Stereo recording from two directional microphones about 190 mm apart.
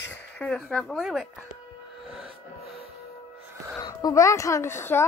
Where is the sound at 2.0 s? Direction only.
Centre (ahead or behind).